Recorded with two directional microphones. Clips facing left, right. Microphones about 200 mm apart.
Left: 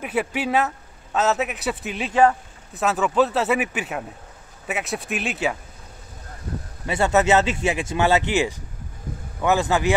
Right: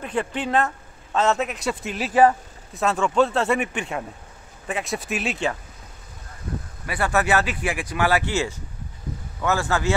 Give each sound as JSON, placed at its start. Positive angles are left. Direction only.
{"t": 0.0, "sound": "a man's voice", "side_deg": 10}
{"t": 6.9, "sound": "a man's voice", "side_deg": 25}